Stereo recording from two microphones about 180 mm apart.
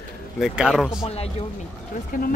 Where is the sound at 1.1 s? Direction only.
35° left (ahead or behind).